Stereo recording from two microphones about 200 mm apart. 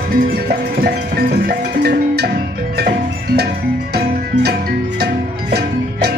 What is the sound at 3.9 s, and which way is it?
Music, 55° right (ahead or behind).